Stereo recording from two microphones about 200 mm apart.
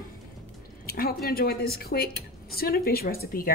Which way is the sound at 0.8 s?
50° left (ahead or behind).